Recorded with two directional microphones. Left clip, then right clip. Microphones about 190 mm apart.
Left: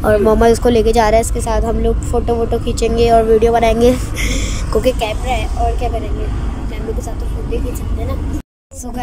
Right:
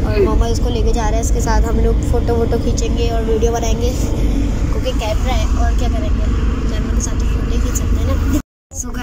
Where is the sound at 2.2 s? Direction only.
15° left (ahead or behind).